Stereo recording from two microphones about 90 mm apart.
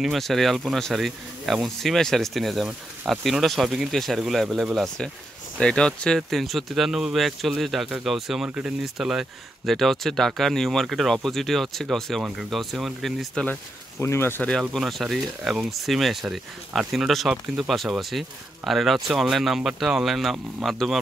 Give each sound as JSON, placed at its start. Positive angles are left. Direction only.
{"t": 0.0, "sound": "speech", "side_deg": 0}
{"t": 13.3, "sound": "speech", "side_deg": 10}
{"t": 13.9, "sound": "speech", "side_deg": 25}
{"t": 14.7, "sound": "speech", "side_deg": 0}